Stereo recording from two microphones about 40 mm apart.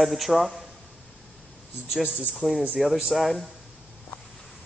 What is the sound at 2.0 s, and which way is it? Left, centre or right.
Speech, right.